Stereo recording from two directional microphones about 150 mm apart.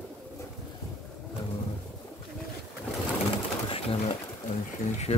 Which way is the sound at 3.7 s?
40° left (ahead or behind).